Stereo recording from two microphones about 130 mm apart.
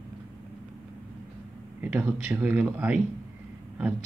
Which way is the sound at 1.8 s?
15° right (ahead or behind).